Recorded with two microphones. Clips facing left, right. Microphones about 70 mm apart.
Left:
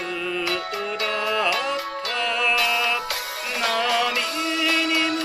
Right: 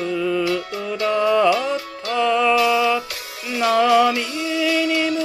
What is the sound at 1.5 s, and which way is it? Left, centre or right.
Music, left.